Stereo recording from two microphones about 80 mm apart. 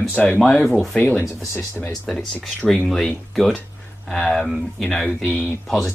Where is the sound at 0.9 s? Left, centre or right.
Centre.